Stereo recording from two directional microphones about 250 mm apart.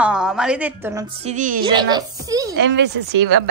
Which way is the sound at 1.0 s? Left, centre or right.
Right.